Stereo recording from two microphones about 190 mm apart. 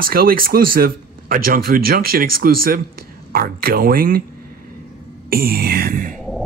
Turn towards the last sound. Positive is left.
turn(degrees=-50)  # may be behind; listen again after turning